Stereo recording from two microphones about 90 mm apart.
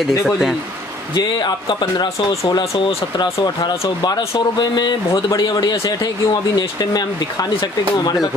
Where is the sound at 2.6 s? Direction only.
90° left.